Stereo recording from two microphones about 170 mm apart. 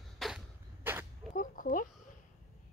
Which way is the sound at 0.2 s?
Centre (ahead or behind).